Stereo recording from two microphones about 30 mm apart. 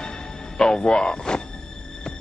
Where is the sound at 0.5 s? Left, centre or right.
Left.